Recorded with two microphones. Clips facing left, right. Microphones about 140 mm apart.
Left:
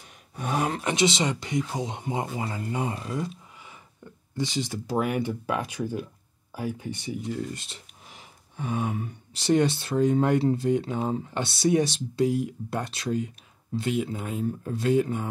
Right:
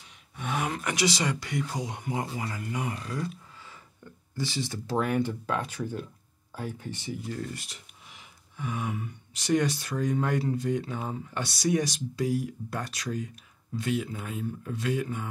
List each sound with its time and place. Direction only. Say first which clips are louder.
0.4 s speech: left 4 dB; 35° left (ahead or behind); by 7.5 s 10° left (ahead or behind)
7.5 s speech: left 2 dB; 25° left (ahead or behind)